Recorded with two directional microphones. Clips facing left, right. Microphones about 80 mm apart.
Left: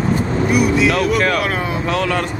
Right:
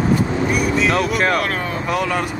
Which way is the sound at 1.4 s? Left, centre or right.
Centre.